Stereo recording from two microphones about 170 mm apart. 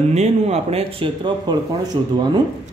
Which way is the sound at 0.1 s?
40° right (ahead or behind).